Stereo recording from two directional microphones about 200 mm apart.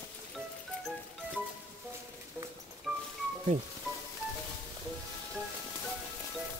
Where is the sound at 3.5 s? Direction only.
35° right (ahead or behind).